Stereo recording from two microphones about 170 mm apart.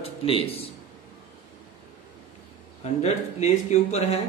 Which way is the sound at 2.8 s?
40° left (ahead or behind).